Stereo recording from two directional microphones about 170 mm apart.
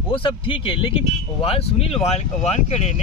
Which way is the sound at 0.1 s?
30° left (ahead or behind).